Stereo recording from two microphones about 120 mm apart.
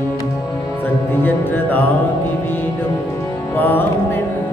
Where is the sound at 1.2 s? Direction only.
15° left (ahead or behind).